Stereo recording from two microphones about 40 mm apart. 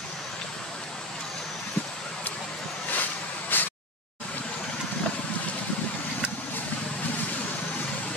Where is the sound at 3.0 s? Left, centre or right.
Left.